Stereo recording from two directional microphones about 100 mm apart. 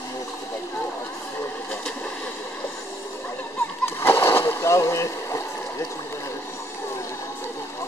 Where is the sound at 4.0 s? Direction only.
25° left (ahead or behind).